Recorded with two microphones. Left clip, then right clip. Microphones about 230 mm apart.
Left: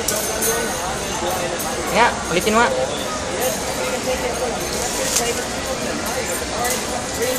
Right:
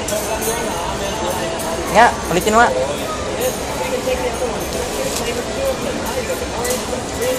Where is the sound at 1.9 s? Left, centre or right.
Right.